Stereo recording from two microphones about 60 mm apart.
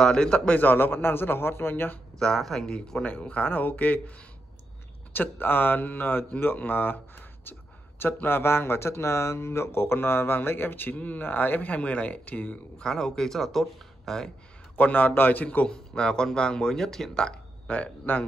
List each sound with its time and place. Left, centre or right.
0.0 s speech: centre
0.6 s speech: left
2.1 s speech: centre
3.0 s speech: left
5.1 s speech: left
12.8 s speech: centre
14.8 s speech: left
15.4 s speech: left